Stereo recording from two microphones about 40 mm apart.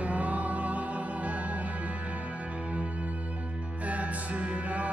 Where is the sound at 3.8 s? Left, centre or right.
Right.